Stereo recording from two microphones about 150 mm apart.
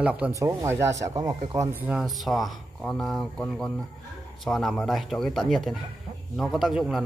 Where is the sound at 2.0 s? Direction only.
Centre (ahead or behind).